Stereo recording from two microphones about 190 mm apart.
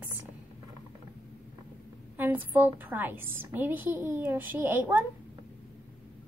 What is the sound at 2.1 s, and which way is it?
A woman's voice, 10° right (ahead or behind).